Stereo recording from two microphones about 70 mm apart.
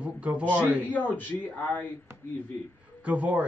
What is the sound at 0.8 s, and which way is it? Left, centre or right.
Speech, left.